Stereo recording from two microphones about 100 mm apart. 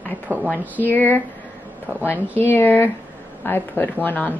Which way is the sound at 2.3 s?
20° left (ahead or behind).